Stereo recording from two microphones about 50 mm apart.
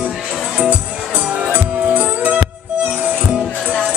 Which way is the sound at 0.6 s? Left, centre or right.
Right.